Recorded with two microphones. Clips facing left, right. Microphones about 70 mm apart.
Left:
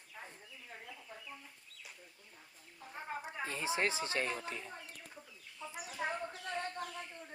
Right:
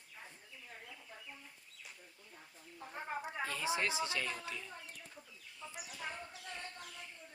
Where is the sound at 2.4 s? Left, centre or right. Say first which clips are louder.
Right 4 dB; centre.